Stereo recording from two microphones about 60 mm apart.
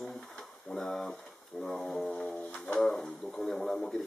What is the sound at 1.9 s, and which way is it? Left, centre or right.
Speech, centre.